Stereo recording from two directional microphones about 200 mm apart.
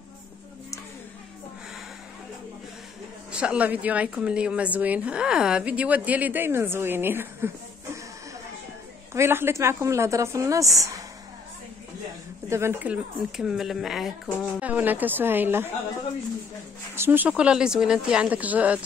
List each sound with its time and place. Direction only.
3.3 s a woman's voice: 5° right (ahead or behind)
9.1 s a woman's voice: 10° right (ahead or behind)
12.4 s a woman's voice: 15° right (ahead or behind)
16.9 s speech: 10° right (ahead or behind)